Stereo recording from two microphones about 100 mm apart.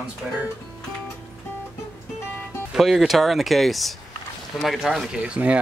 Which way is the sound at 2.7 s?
5° right (ahead or behind).